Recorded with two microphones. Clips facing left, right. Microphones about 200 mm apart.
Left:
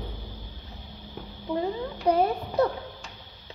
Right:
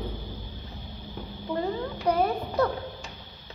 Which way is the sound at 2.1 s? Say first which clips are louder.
Left 2 dB; 25° left (ahead or behind).